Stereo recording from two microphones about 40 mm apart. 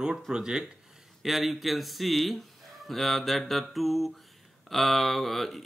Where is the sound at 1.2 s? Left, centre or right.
Centre.